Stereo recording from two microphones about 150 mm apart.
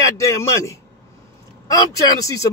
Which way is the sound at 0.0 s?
20° left (ahead or behind).